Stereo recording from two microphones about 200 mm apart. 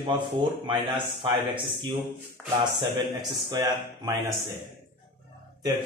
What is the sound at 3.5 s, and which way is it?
Speech, 15° right (ahead or behind).